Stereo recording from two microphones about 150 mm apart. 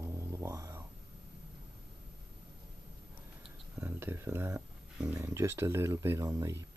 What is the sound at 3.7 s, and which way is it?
Speech, 15° right (ahead or behind).